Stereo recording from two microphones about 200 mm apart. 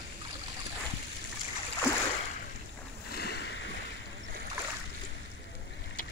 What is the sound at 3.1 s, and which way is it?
Boat, 55° left (ahead or behind).